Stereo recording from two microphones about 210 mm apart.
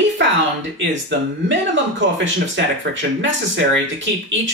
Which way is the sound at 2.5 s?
60° right (ahead or behind).